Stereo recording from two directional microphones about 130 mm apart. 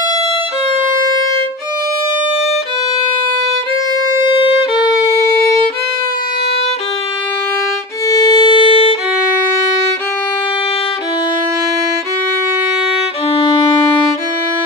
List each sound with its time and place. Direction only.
8.1 s violin: 30° left (ahead or behind)
13.3 s violin: 40° left (ahead or behind)